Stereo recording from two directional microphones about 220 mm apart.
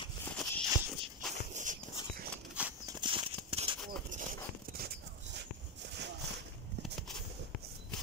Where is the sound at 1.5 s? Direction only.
35° right (ahead or behind).